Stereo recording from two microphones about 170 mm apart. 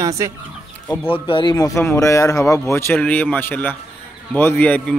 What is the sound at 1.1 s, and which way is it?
A man's voice, 30° left (ahead or behind).